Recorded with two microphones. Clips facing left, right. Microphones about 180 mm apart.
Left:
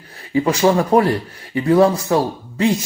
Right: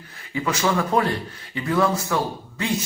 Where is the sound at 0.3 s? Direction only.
35° left (ahead or behind).